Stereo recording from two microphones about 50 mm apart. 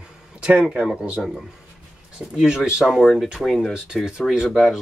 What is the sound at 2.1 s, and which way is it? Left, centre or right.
Speech, centre.